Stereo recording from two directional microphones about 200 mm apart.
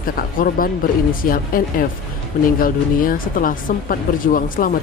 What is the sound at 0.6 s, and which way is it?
Speech, 45° left (ahead or behind).